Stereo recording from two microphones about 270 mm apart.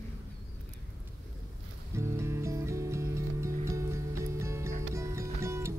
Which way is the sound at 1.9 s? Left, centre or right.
Centre.